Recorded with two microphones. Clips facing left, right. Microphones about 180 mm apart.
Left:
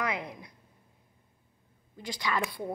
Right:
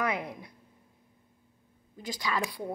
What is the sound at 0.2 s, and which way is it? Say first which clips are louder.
Speech: right 2 dB; 15° left (ahead or behind).